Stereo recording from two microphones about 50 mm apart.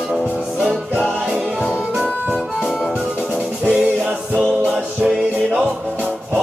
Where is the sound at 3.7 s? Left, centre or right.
Centre.